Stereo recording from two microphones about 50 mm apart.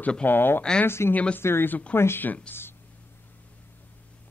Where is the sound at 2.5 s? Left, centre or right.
Left.